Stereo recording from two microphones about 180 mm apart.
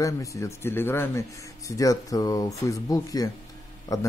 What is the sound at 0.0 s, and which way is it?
Speech, 15° left (ahead or behind).